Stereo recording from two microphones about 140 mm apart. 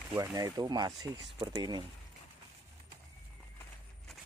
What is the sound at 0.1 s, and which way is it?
Speech, 25° right (ahead or behind).